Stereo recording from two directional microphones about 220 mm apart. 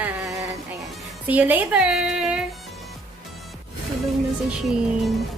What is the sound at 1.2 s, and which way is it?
Speech, 5° right (ahead or behind).